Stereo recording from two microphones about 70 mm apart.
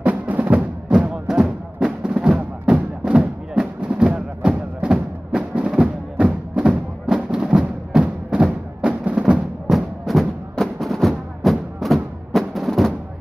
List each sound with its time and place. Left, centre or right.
0.0 s music: right
1.1 s music: centre
9.7 s music: centre